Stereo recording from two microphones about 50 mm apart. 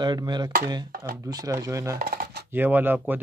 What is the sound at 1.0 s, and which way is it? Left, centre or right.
Speech, right.